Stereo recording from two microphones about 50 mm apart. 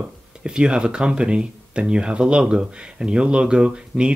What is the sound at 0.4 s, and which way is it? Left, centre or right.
Speech, centre.